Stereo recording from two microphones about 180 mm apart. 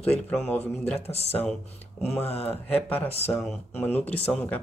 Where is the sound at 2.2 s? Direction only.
35° left (ahead or behind).